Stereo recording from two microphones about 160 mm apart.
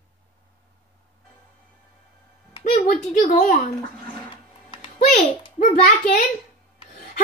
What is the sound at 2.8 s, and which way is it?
Speech, 50° left (ahead or behind).